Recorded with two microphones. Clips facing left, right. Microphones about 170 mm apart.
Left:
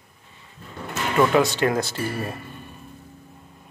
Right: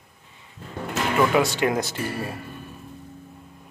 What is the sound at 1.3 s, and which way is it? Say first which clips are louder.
Speech: left 1 dB; 10° right (ahead or behind).